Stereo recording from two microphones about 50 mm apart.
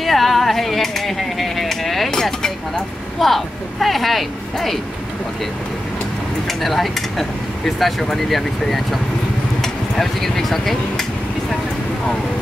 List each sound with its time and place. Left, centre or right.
0.0 s a sound: centre
2.0 s speech: centre
6.4 s speech: centre